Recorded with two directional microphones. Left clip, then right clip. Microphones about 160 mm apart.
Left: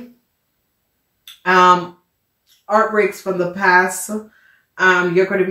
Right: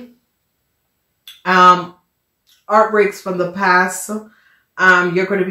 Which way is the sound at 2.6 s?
35° right (ahead or behind).